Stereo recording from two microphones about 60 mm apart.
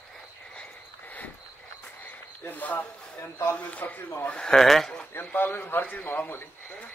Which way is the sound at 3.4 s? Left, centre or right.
Left.